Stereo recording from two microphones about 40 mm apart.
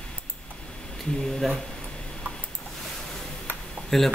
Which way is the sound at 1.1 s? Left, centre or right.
Centre.